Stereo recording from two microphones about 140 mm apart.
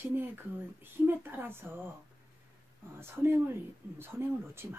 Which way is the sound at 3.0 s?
15° right (ahead or behind).